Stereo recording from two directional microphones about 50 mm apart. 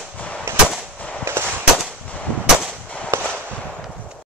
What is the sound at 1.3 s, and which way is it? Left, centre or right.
Firecracker, right.